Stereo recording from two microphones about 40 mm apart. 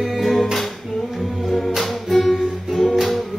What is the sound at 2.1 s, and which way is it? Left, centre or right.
Music, centre.